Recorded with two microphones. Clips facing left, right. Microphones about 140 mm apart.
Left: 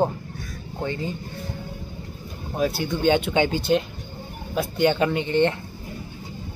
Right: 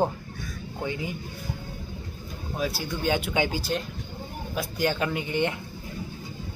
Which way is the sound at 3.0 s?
5° right (ahead or behind).